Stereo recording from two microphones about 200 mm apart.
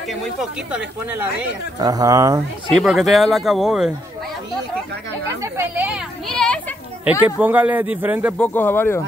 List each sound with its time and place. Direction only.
0.1 s speech: centre (ahead or behind); by 2.4 s 15° right (ahead or behind)
2.7 s speech: centre (ahead or behind)
5.4 s speech: 10° right (ahead or behind)
6.2 s a sound: 5° left (ahead or behind)
7.1 s speech: 5° right (ahead or behind)
8.4 s speech: 10° left (ahead or behind)